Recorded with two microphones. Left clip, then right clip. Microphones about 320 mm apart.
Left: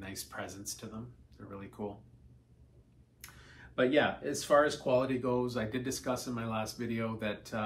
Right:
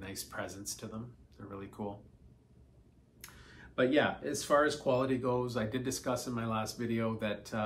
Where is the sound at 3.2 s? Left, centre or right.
Centre.